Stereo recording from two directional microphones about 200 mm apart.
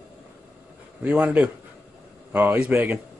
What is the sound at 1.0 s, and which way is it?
A man's voice, 5° right (ahead or behind).